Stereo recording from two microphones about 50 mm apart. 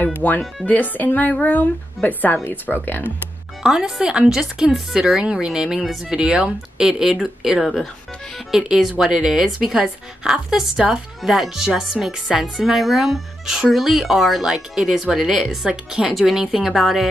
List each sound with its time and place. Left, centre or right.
0.2 s speech: left
3.6 s speech: centre
8.5 s speech: centre
12.3 s speech: centre
12.6 s speech: centre